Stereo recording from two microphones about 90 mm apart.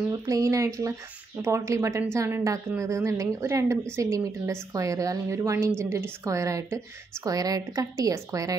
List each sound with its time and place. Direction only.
0.1 s a woman's voice: 35° right (ahead or behind)